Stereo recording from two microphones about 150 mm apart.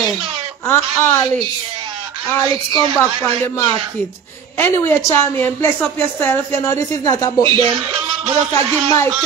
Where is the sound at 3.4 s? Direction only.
15° left (ahead or behind).